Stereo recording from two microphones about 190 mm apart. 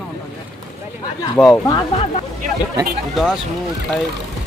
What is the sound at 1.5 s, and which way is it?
Speech, 20° left (ahead or behind).